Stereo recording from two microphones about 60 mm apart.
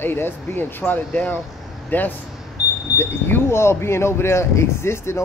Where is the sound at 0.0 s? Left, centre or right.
Left.